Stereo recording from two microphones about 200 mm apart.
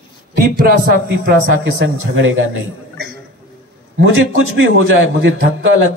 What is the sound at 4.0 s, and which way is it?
A man's voice, 85° right.